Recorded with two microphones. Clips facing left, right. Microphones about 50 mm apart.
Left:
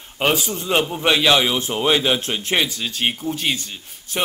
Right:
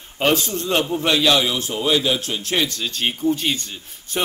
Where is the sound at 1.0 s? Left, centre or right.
Left.